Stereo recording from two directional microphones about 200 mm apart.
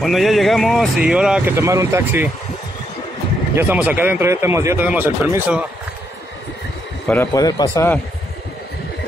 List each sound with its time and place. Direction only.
0.0 s speech: centre (ahead or behind)
3.5 s speech: 10° right (ahead or behind)
7.1 s a man's voice: 15° left (ahead or behind)